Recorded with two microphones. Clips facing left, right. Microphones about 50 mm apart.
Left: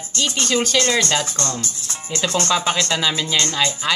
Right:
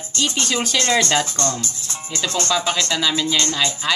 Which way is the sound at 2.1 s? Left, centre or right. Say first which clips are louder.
Left 2 dB; left.